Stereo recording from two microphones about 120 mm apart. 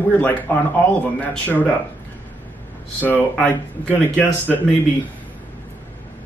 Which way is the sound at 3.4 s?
15° left (ahead or behind).